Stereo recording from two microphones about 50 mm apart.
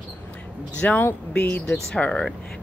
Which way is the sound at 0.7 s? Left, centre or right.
Left.